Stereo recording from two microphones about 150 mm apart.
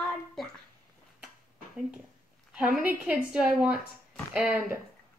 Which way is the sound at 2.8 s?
5° right (ahead or behind).